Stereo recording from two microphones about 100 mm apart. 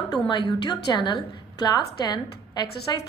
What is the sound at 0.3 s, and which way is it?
A woman's voice, 50° left (ahead or behind).